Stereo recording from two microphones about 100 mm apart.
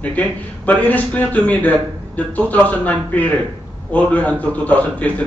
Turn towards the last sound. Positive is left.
turn(degrees=15)  # may be behind; listen again after turning